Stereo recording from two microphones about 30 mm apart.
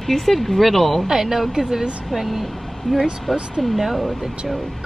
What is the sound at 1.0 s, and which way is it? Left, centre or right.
Speech, centre.